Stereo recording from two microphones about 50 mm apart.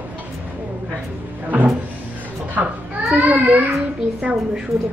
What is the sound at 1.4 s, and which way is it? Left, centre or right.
A woman's voice, right.